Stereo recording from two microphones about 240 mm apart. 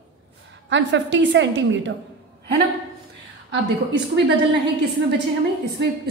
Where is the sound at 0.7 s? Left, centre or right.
Right.